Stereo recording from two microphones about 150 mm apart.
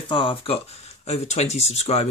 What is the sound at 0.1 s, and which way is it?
Speech, 35° left (ahead or behind).